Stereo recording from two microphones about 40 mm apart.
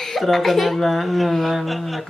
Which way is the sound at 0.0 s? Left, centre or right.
Centre.